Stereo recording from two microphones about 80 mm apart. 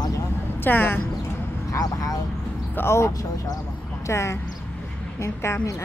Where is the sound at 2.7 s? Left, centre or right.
Left.